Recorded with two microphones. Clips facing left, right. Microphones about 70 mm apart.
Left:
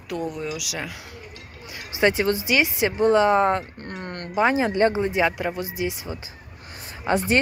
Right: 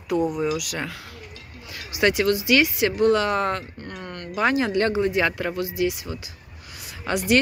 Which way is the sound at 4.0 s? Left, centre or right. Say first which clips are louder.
Left 3 dB; left.